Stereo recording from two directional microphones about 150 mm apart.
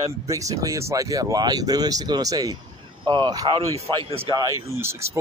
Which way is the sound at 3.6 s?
40° right (ahead or behind).